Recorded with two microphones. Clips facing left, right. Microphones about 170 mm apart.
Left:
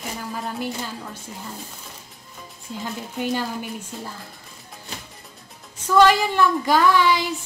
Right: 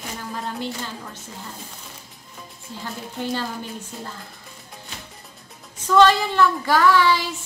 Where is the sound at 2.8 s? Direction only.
15° left (ahead or behind).